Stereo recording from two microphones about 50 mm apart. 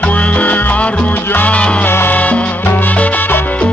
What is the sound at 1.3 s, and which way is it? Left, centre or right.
Music, left.